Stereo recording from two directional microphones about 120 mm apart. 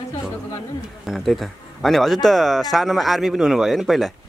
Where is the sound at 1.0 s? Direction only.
Centre (ahead or behind).